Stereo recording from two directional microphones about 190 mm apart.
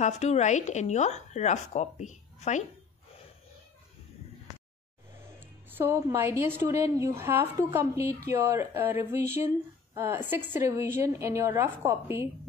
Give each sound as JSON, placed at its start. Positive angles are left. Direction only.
{"t": 0.0, "sound": "speech", "side_deg": 35}
{"t": 5.4, "sound": "a woman's voice", "side_deg": -10}